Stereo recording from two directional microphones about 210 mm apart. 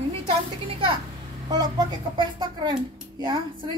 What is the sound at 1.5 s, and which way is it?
A woman's voice, 20° right (ahead or behind).